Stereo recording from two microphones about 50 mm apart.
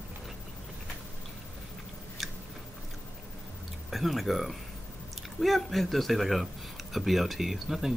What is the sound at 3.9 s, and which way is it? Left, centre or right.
Speech, centre.